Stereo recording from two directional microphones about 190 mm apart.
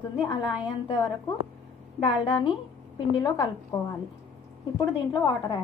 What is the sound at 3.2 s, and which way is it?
A woman's voice, 20° left (ahead or behind).